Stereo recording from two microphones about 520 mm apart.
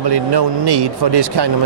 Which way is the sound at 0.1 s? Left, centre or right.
Right.